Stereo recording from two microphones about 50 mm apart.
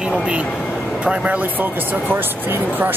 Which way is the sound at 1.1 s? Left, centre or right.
Right.